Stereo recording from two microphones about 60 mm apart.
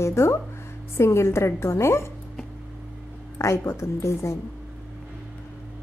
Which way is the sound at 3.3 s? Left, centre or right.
Left.